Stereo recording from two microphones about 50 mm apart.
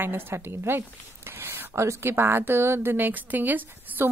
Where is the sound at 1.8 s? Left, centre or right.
Right.